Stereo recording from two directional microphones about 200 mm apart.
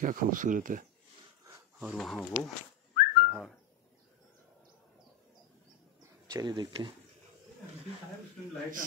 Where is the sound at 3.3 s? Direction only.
5° left (ahead or behind).